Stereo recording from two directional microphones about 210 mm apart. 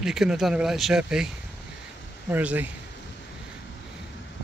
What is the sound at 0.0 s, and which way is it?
A man's voice, centre (ahead or behind).